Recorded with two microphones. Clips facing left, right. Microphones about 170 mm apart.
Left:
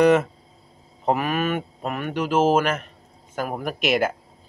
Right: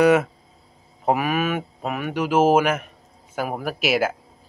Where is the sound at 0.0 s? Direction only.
5° right (ahead or behind).